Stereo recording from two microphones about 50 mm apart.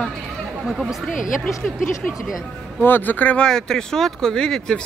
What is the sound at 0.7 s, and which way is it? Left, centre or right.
Speech, centre.